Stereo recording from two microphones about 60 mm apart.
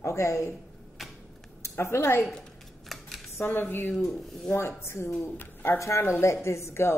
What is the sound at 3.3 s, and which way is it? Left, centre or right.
Speech, left.